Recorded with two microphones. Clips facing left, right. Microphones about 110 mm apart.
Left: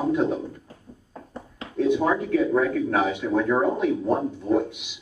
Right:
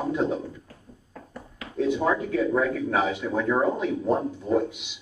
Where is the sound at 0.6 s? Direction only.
20° left (ahead or behind).